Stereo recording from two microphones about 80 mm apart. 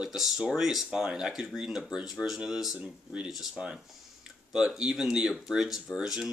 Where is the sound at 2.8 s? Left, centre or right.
Centre.